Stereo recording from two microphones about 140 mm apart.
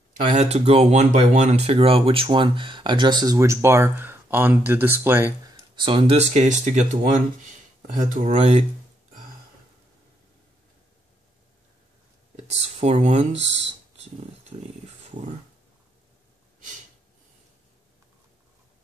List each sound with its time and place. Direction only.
0.2 s speech: 55° right (ahead or behind); by 5.3 s 15° right (ahead or behind)
5.8 s speech: 35° right (ahead or behind); by 7.0 s 60° right (ahead or behind)
7.8 s speech: 75° right (ahead or behind); by 8.6 s 50° right (ahead or behind)
12.4 s speech: 50° right (ahead or behind)
14.5 s speech: 50° right (ahead or behind)